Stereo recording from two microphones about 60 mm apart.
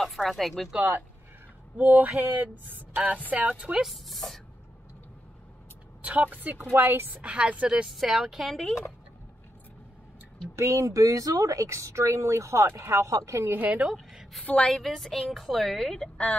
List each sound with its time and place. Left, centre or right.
0.0 s a woman's voice: centre
1.8 s a sound: right
3.8 s a woman's voice: centre
6.0 s a sound: right
6.8 s a woman's voice: right
7.2 s a woman's voice: centre
10.5 s speech: right
13.7 s a sound: centre
14.4 s a woman's voice: left
14.7 s a woman's voice: centre